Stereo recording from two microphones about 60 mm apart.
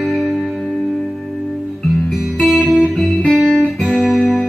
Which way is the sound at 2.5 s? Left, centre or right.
Left.